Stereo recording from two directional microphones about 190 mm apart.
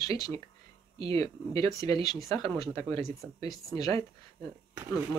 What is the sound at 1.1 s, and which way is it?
Speech, 20° left (ahead or behind).